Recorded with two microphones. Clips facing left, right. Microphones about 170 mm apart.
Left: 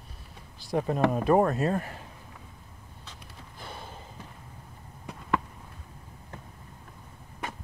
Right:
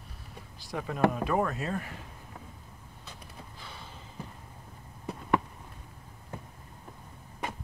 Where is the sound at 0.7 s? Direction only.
35° left (ahead or behind).